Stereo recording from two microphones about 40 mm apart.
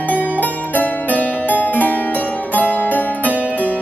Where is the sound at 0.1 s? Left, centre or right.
Left.